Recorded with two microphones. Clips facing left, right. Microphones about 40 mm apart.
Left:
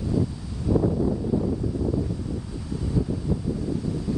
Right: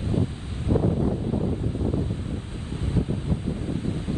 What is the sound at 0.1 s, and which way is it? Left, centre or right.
Wind noise, right.